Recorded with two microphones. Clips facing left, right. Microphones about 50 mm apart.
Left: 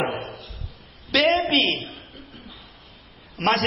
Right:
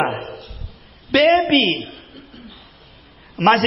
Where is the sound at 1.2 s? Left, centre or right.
Right.